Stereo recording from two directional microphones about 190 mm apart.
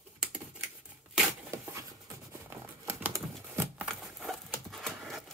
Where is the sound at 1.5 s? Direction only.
15° right (ahead or behind).